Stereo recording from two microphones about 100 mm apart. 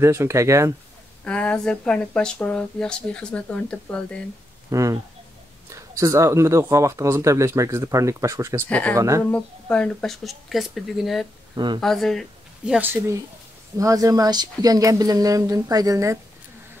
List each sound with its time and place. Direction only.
0.0 s speech: 25° right (ahead or behind)
1.2 s speech: 10° left (ahead or behind)
4.6 s a sound: 35° right (ahead or behind)
5.7 s speech: 35° right (ahead or behind)
8.6 s speech: 15° left (ahead or behind)
8.9 s speech: 35° right (ahead or behind)
9.3 s speech: 10° left (ahead or behind)
11.5 s speech: 50° right (ahead or behind)
11.8 s speech: 5° left (ahead or behind)
12.8 s speech: 25° right (ahead or behind)
13.7 s speech: 35° right (ahead or behind)